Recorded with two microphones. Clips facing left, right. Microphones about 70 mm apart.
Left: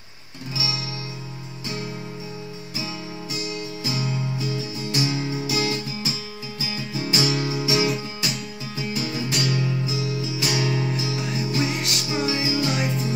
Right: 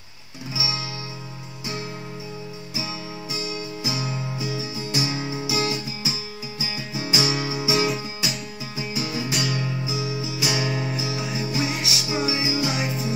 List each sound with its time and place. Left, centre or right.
0.6 s music: right
2.7 s music: centre
9.6 s music: centre